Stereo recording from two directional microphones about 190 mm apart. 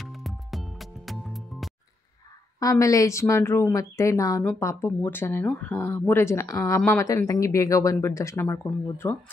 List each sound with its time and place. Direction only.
0.0 s music: centre (ahead or behind)
2.6 s speech: 15° left (ahead or behind)